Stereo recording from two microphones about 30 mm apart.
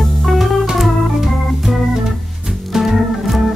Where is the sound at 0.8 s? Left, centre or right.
Centre.